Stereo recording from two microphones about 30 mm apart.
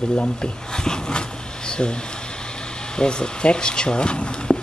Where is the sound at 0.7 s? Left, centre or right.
Left.